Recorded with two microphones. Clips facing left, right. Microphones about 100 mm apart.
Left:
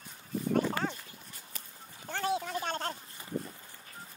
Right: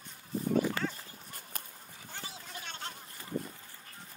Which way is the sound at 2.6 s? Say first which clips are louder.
Left 9 dB; 45° left (ahead or behind).